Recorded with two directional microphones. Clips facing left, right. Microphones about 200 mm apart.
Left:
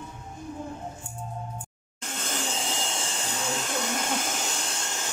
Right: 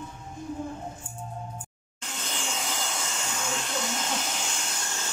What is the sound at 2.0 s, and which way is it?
Vacuum cleaner, 45° left (ahead or behind).